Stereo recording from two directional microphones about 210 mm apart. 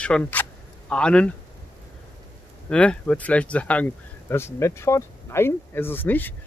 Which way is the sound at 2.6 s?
5° left (ahead or behind).